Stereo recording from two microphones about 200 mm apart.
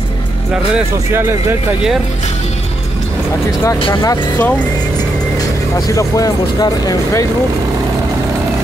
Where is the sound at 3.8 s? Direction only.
20° left (ahead or behind).